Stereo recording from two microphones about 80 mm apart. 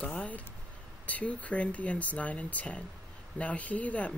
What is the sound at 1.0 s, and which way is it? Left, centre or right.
Speech, centre.